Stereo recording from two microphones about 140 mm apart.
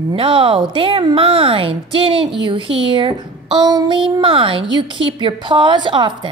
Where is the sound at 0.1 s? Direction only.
40° right (ahead or behind).